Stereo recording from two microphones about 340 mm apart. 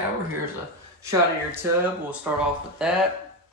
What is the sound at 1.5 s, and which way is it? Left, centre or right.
Speech, centre.